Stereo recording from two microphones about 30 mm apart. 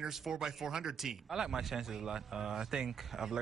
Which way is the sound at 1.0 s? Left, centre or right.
Centre.